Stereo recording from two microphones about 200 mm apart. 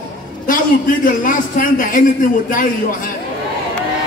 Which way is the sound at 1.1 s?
45° left (ahead or behind).